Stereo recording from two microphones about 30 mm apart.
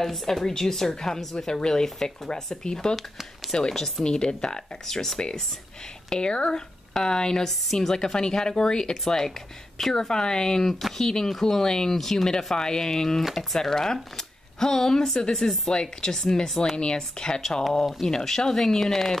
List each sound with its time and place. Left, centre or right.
0.0 s speech: centre
3.6 s speech: centre
4.0 s speech: left
4.8 s speech: centre
6.0 s speech: left
7.4 s speech: centre
7.9 s speech: left
9.0 s speech: centre
10.6 s speech: centre
11.6 s speech: left
11.9 s speech: centre
15.7 s speech: left
16.7 s speech: left
18.2 s speech: centre